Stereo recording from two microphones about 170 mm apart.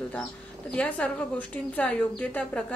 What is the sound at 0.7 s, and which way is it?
Speech, 10° left (ahead or behind).